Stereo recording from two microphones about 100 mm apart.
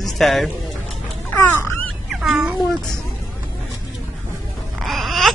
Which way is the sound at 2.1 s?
5° right (ahead or behind).